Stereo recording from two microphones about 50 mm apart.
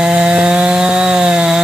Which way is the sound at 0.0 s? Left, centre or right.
Centre.